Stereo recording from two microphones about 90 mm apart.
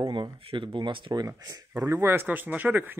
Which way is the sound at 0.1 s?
65° right (ahead or behind).